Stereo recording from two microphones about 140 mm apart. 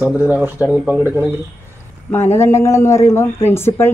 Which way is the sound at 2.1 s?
15° left (ahead or behind).